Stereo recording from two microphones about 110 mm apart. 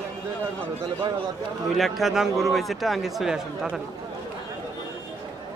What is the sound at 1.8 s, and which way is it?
Speech, centre (ahead or behind).